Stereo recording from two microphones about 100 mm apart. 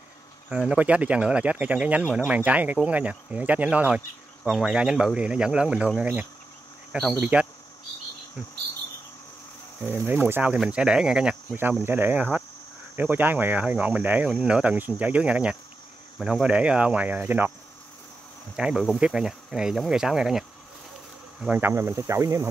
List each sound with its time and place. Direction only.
0.5 s speech: 10° right (ahead or behind)
9.8 s speech: 20° right (ahead or behind)
11.8 s speech: 20° right (ahead or behind)
18.6 s speech: 5° right (ahead or behind)
21.5 s speech: 20° right (ahead or behind)